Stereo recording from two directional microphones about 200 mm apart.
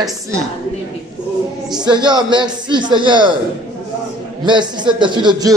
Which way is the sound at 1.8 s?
20° right (ahead or behind).